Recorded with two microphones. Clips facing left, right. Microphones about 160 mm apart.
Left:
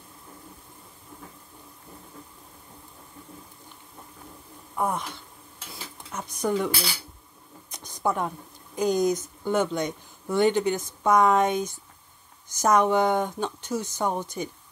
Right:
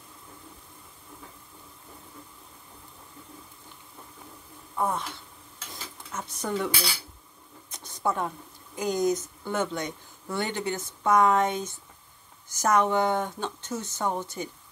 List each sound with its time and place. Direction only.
4.7 s speech: 10° left (ahead or behind)
5.7 s dishes: 15° left (ahead or behind)
7.7 s a sound: 15° left (ahead or behind)
8.7 s speech: 20° left (ahead or behind)